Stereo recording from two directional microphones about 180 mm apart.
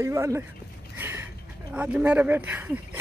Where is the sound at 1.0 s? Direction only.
10° right (ahead or behind).